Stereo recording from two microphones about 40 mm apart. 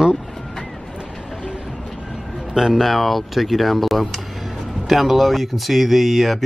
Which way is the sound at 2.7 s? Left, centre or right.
Centre.